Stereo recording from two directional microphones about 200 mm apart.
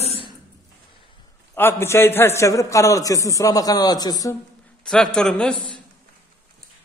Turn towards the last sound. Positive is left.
turn(degrees=5)  # may be behind; listen again after turning